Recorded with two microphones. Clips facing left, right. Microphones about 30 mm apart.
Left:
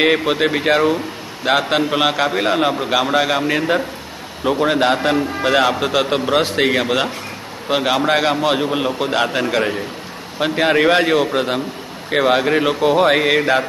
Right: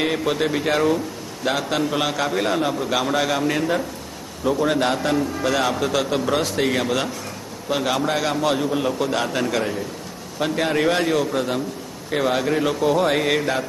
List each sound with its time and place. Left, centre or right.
0.0 s speech: left
6.7 s speech: left